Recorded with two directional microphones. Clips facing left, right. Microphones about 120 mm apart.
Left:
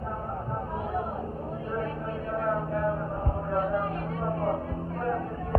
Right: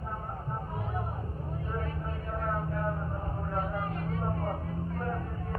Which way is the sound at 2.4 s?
50° left (ahead or behind).